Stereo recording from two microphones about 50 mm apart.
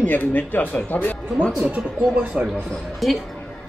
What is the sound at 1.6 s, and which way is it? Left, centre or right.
Speech, right.